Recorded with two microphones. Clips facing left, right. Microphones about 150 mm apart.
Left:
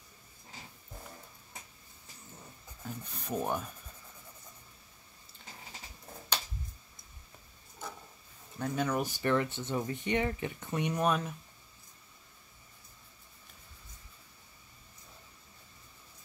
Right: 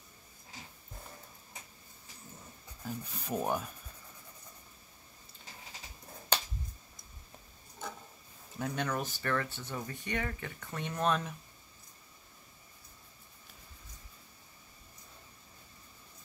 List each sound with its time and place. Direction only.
2.8 s speech: centre (ahead or behind)
8.5 s speech: centre (ahead or behind)